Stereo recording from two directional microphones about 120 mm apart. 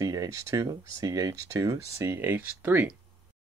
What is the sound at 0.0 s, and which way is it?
Speech, 30° right (ahead or behind).